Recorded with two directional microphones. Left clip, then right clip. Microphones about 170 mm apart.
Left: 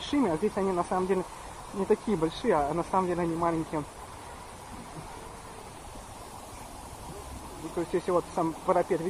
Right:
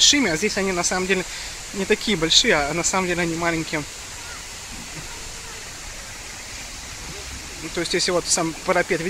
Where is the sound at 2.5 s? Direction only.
25° right (ahead or behind).